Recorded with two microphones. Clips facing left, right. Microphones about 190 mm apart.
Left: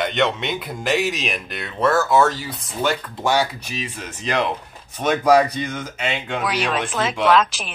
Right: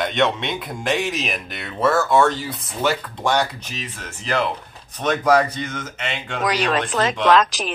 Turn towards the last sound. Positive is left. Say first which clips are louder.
# right 1 dB
turn(degrees=5)  # may be behind; listen again after turning